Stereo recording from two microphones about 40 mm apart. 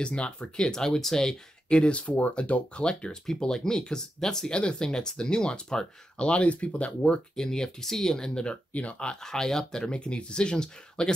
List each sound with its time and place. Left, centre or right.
0.0 s speech: left
0.6 s speech: centre
1.7 s speech: left
3.3 s speech: centre
6.2 s speech: left
7.3 s speech: centre
8.7 s speech: left
9.1 s speech: centre
9.9 s speech: left